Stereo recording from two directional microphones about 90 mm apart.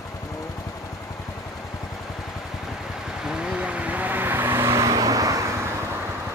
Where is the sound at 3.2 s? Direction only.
5° right (ahead or behind); by 5.4 s 40° right (ahead or behind).